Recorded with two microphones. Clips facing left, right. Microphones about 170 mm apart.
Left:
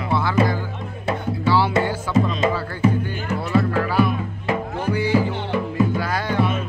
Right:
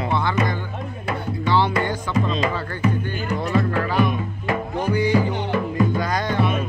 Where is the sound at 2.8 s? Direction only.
30° left (ahead or behind).